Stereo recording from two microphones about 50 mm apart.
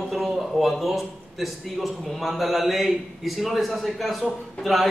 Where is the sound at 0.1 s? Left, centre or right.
Centre.